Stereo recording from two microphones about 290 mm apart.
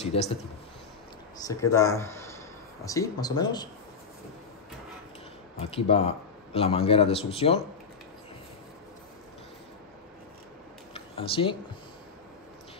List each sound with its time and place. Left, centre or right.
0.0 s a man's voice: left
1.4 s speech: centre
5.6 s a man's voice: centre
10.9 s a sound: centre